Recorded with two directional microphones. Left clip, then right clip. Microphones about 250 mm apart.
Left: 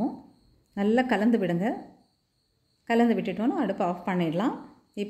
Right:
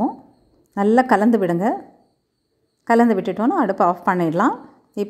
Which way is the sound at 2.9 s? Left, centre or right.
Right.